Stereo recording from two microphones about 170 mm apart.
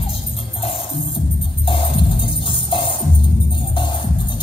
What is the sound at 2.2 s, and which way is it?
Music, 30° left (ahead or behind).